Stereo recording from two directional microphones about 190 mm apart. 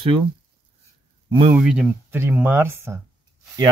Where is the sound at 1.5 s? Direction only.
5° right (ahead or behind).